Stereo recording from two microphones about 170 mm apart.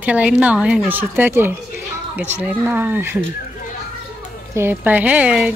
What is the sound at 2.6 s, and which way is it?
Speech, 10° right (ahead or behind).